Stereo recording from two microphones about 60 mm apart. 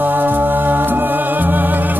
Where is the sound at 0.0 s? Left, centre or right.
Right.